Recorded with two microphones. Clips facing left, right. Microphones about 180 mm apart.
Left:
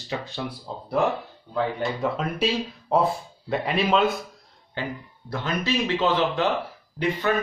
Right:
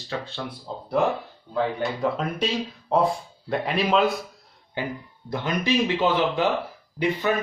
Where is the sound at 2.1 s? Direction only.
5° left (ahead or behind).